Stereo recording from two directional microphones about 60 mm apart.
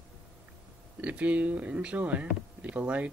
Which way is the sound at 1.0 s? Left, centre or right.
Right.